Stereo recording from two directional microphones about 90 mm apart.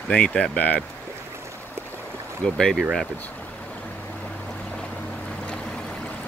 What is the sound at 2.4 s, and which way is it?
Speech, 5° left (ahead or behind).